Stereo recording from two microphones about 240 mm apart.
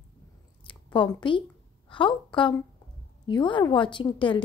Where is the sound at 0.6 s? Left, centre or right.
Centre.